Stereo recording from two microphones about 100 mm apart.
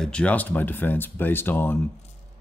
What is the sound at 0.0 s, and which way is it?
Speech, 10° left (ahead or behind).